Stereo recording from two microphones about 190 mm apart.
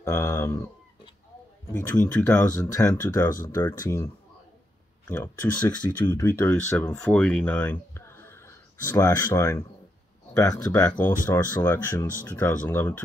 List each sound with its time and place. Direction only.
0.0 s speech: 15° left (ahead or behind)
1.7 s speech: 10° left (ahead or behind)
2.2 s speech: 20° left (ahead or behind)